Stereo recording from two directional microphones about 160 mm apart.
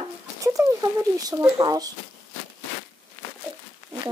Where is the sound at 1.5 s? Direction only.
25° right (ahead or behind).